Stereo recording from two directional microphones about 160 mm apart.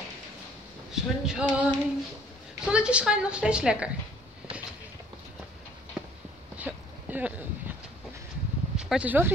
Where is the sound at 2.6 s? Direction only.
5° right (ahead or behind).